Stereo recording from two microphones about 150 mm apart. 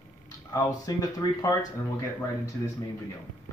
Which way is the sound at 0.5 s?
25° left (ahead or behind).